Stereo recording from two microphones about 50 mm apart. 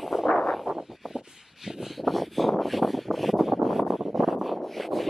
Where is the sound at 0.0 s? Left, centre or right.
Centre.